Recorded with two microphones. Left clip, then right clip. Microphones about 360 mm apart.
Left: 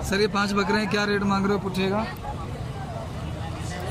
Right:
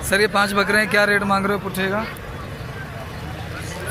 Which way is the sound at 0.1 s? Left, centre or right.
Centre.